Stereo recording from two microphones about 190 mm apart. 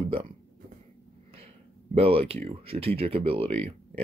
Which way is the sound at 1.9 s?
30° right (ahead or behind).